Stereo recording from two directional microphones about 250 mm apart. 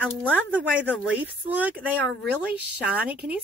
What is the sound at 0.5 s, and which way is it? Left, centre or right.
Speech, centre.